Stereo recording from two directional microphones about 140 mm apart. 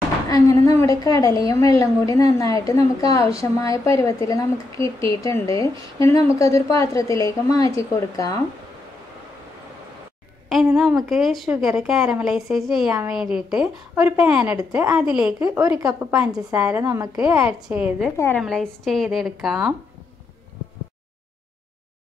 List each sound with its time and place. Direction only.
0.3 s a woman's voice: 25° left (ahead or behind)
10.5 s a woman's voice: 5° right (ahead or behind)
18.1 s a woman's voice: 15° left (ahead or behind)
18.4 s a woman's voice: centre (ahead or behind)